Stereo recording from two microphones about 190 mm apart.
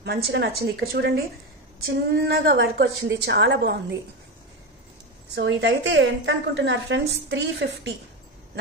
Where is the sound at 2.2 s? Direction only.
55° right (ahead or behind).